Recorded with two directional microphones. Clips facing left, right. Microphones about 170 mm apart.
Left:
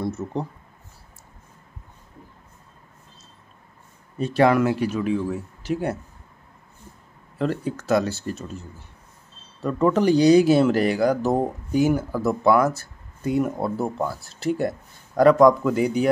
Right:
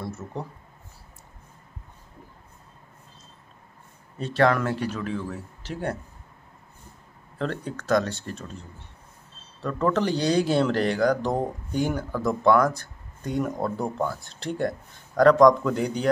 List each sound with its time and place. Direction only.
0.0 s speech: 20° left (ahead or behind)
4.2 s speech: 10° left (ahead or behind)
7.3 s speech: 5° left (ahead or behind)